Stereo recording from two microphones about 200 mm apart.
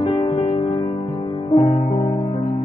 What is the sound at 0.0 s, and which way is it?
Music, 25° left (ahead or behind).